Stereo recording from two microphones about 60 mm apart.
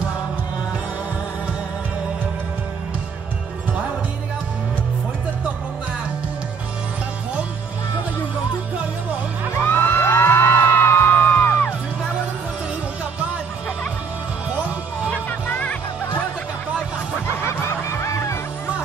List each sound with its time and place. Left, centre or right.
9.7 s music: left
17.4 s music: left